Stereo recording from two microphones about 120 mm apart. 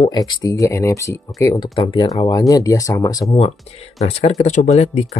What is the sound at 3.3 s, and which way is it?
Speech, 60° left (ahead or behind).